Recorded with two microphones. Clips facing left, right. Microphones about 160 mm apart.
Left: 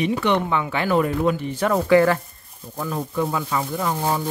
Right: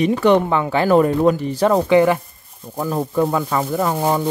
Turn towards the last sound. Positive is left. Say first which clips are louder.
# right 5 dB
turn(degrees=-55)  # may be behind; listen again after turning